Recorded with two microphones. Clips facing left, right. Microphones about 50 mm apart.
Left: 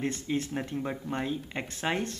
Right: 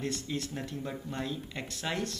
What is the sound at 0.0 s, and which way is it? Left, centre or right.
Speech, left.